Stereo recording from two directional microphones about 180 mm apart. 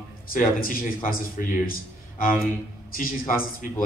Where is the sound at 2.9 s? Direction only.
50° left (ahead or behind).